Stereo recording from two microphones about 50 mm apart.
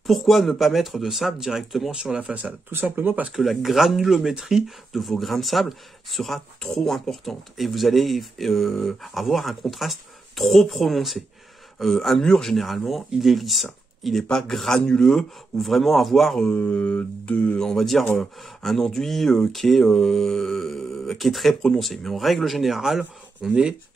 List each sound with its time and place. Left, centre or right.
0.0 s speech: centre
2.1 s speech: right
2.7 s speech: right
3.3 s speech: centre
4.9 s speech: centre
15.6 s speech: centre
16.5 s mantra: left
17.6 s speech: centre